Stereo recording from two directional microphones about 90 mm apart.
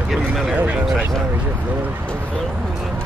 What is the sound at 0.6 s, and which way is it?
Speech, 15° right (ahead or behind).